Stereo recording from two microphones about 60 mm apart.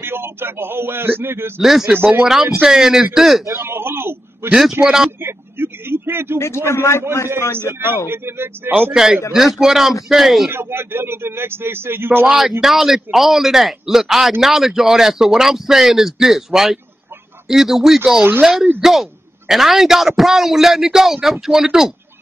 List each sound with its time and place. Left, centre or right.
0.0 s a man's voice: right
1.6 s a man's voice: centre
3.7 s a sound: right
4.6 s a man's voice: centre
5.2 s vehicle: right
6.4 s a man's voice: left
7.5 s a man's voice: right
8.9 s a man's voice: centre
10.5 s a man's voice: right
12.3 s a man's voice: centre